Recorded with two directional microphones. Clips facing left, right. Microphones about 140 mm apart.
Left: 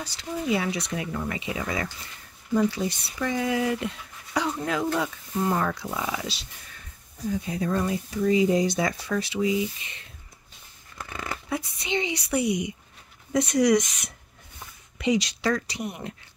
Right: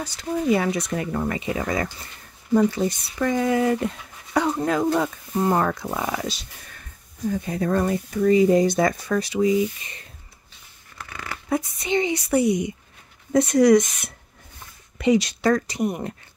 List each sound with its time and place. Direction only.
0.0 s speech: 50° right (ahead or behind)
11.4 s speech: 45° right (ahead or behind)